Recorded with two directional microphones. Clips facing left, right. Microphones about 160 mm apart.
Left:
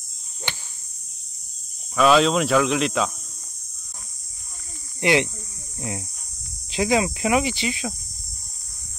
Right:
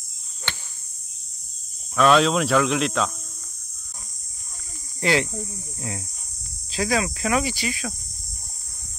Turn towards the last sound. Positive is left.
turn(degrees=20)  # may be behind; listen again after turning